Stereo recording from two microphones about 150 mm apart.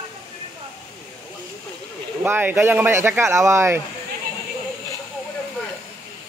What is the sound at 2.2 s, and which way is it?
Speech, 15° right (ahead or behind).